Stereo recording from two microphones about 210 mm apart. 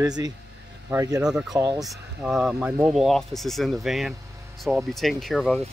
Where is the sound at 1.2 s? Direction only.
5° right (ahead or behind).